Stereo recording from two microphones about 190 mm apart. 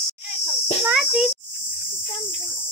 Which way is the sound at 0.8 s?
Centre (ahead or behind).